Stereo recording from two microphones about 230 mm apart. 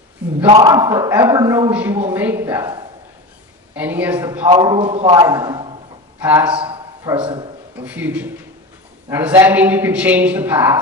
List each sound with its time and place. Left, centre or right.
0.5 s a woman's voice: centre
6.1 s speech: centre
6.5 s a man's voice: right
7.7 s a woman's voice: centre